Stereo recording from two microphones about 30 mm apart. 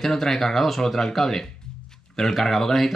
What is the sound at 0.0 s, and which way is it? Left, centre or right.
Speech, centre.